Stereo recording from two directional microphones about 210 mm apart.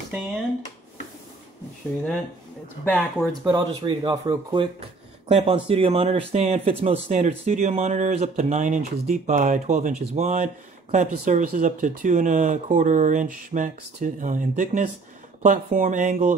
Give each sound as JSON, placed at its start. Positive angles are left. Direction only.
{"t": 0.1, "sound": "speech", "side_deg": 0}
{"t": 2.8, "sound": "speech", "side_deg": 10}
{"t": 3.4, "sound": "speech", "side_deg": -20}